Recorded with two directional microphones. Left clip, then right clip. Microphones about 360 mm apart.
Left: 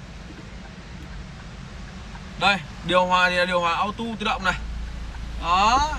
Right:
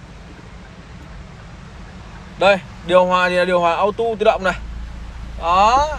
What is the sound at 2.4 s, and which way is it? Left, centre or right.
A man's voice, centre.